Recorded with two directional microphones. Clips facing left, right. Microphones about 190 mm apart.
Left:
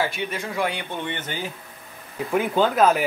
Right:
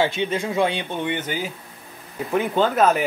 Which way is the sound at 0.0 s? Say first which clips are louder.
Right 5 dB; 25° right (ahead or behind).